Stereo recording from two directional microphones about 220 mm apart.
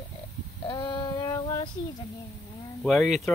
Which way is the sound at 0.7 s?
20° left (ahead or behind).